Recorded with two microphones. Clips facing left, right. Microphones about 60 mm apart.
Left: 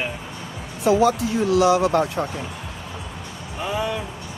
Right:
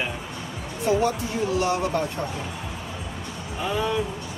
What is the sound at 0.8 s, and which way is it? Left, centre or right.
Speech, left.